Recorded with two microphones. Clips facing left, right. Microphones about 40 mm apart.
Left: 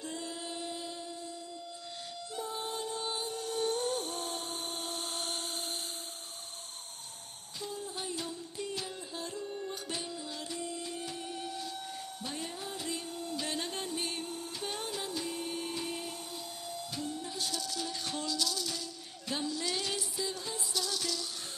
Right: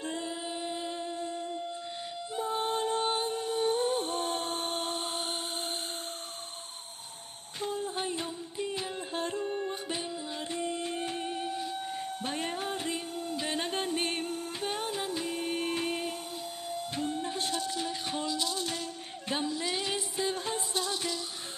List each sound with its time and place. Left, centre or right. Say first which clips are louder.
0.0 s music: right 5 dB; right
7.6 s music: right 7 dB; right
9.1 s music: right 8 dB; right
13.1 s music: right 3 dB; right
19.2 s a sound: right 3 dB; right
20.2 s music: right 5 dB; right